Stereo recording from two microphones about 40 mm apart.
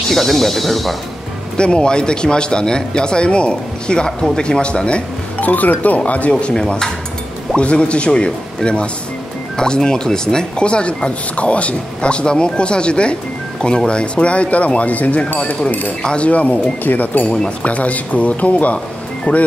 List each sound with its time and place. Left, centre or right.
0.1 s speech: centre
1.6 s speech: left
5.4 s speech: left
6.5 s speech: centre
7.5 s speech: left
9.6 s speech: centre; by 15.9 s left
16.0 s speech: left
16.3 s speech: left
16.8 s speech: left